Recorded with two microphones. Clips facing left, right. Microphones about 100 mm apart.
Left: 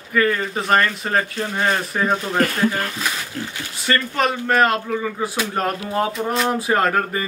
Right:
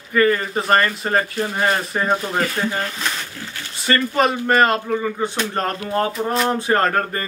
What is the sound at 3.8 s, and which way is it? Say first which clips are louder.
Speech: right 2 dB; centre (ahead or behind).